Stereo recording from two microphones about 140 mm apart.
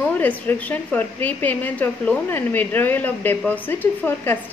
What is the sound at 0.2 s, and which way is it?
A woman's voice, 10° left (ahead or behind).